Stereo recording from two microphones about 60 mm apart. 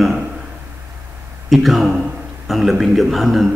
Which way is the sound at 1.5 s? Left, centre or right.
Centre.